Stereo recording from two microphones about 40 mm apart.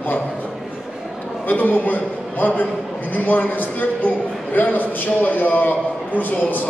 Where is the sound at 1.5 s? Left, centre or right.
Left.